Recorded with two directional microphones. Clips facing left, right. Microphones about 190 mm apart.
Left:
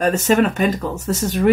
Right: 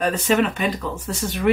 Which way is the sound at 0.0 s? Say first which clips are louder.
Left 4 dB; 45° left (ahead or behind).